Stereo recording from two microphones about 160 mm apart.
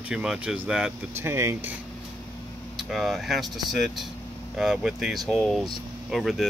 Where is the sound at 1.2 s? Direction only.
15° right (ahead or behind).